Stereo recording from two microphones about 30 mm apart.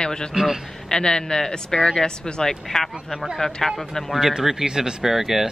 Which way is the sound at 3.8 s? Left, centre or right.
Centre.